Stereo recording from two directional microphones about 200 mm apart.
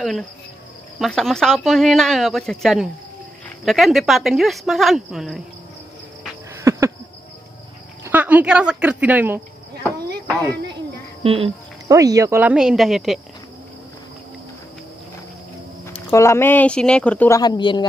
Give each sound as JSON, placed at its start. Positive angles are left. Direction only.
{"t": 0.9, "sound": "speech", "side_deg": 0}
{"t": 6.6, "sound": "a sound", "side_deg": -15}
{"t": 8.0, "sound": "speech", "side_deg": -10}
{"t": 11.2, "sound": "speech", "side_deg": -30}
{"t": 11.9, "sound": "speech", "side_deg": -15}
{"t": 15.8, "sound": "speech", "side_deg": 15}
{"t": 17.4, "sound": "speech", "side_deg": 20}